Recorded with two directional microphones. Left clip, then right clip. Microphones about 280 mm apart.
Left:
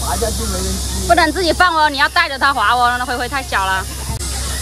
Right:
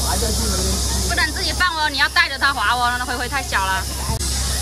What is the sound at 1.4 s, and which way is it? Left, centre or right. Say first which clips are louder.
Speech: left 7 dB; centre.